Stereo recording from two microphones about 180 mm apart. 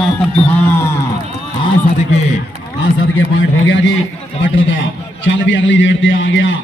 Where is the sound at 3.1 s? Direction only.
90° left.